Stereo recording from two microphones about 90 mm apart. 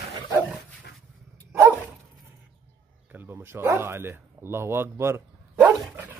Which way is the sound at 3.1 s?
25° right (ahead or behind).